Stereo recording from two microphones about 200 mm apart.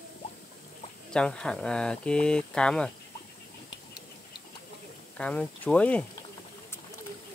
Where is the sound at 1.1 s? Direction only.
5° left (ahead or behind).